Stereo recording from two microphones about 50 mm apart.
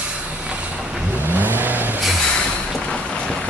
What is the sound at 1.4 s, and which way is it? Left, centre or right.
Vehicle, right.